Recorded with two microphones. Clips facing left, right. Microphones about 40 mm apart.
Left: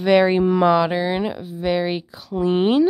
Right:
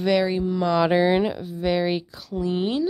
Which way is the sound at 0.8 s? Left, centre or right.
Centre.